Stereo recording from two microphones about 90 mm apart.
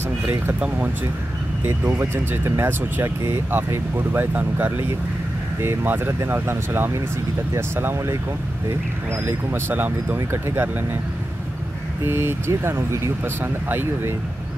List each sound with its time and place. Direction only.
0.3 s speech: 20° right (ahead or behind)
9.2 s speech: 20° right (ahead or behind)
12.0 s speech: 25° right (ahead or behind)